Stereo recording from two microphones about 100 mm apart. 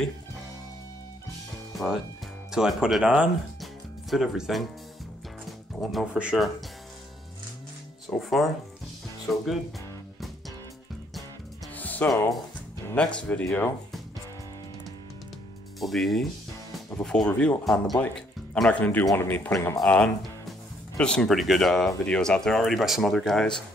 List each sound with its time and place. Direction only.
1.5 s music: centre (ahead or behind)
2.5 s speech: 5° right (ahead or behind)
5.8 s speech: centre (ahead or behind)
6.1 s speech: 10° right (ahead or behind)
8.2 s speech: centre (ahead or behind)
11.7 s music: 15° left (ahead or behind)
12.9 s speech: 10° left (ahead or behind)
15.8 s speech: centre (ahead or behind); by 19.5 s 20° left (ahead or behind)
19.5 s speech: 35° left (ahead or behind)
19.8 s speech: 5° left (ahead or behind)